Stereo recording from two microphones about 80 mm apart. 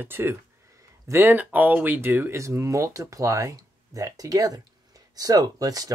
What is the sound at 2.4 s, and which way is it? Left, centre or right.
Speech, right.